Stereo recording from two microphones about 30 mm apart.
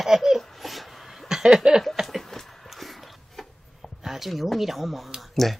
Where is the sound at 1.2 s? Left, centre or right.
Right.